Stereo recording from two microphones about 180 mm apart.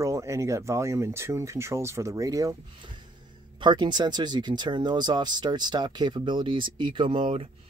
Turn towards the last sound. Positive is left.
turn(degrees=-30)  # may be behind; listen again after turning